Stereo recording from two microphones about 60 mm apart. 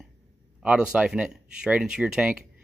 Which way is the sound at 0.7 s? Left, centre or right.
Centre.